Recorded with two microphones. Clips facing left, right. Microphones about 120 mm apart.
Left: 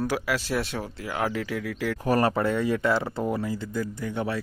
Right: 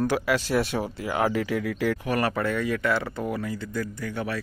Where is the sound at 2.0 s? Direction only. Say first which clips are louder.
Left 3 dB; 30° left (ahead or behind).